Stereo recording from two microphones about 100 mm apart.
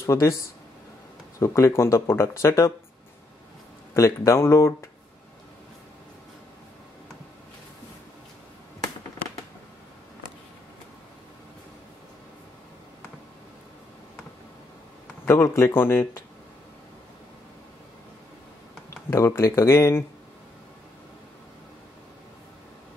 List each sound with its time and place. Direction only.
0.0 s speech: 30° left (ahead or behind)
1.4 s speech: 30° left (ahead or behind)
3.9 s speech: 30° left (ahead or behind)
15.2 s speech: 30° left (ahead or behind)
19.0 s speech: 30° left (ahead or behind)